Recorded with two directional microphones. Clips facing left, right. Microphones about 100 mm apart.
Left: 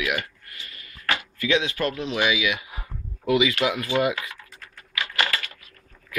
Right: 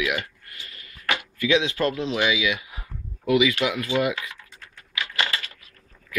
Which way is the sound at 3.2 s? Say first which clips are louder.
Right 1 dB; 35° left (ahead or behind).